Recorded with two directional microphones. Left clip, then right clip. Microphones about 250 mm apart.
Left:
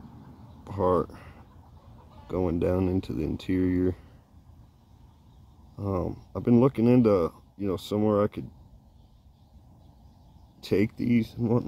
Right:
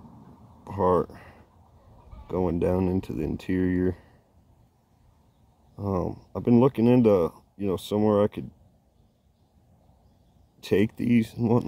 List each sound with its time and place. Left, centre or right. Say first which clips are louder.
0.7 s a sound: right 2 dB; centre
2.2 s speech: right 1 dB; centre
5.8 s speech: right 2 dB; centre
10.6 s speech: right 2 dB; right